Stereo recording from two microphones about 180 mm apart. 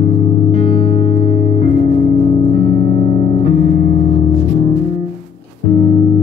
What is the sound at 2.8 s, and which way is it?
Music, 25° left (ahead or behind).